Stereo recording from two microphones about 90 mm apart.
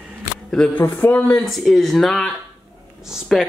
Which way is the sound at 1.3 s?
Centre (ahead or behind).